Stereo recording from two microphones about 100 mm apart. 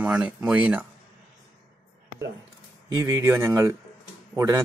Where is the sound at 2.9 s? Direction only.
35° right (ahead or behind).